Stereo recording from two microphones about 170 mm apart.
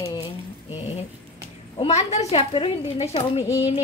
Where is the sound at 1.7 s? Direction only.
35° left (ahead or behind).